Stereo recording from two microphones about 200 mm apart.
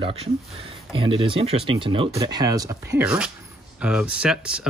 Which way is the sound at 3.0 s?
5° right (ahead or behind).